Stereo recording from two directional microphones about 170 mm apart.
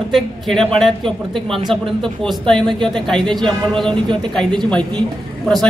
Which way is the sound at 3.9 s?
30° right (ahead or behind).